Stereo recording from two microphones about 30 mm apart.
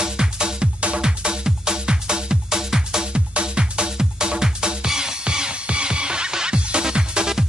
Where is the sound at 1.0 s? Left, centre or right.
Right.